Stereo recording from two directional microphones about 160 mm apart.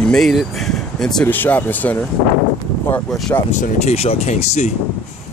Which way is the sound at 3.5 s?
50° left (ahead or behind).